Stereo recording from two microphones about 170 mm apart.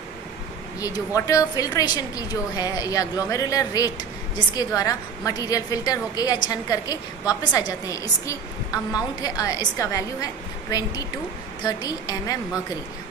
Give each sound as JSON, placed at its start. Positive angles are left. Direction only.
{"t": 0.7, "sound": "a woman's voice", "side_deg": 20}